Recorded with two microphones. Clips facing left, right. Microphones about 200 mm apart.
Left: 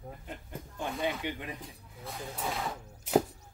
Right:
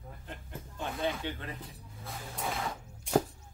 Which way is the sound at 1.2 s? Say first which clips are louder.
Left 1 dB; 15° left (ahead or behind).